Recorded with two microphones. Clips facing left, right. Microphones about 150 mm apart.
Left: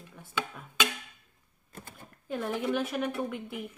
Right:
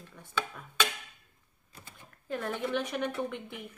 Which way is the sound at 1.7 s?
50° left (ahead or behind).